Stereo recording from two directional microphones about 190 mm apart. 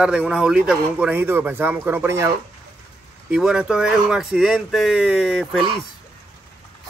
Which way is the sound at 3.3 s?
5° right (ahead or behind).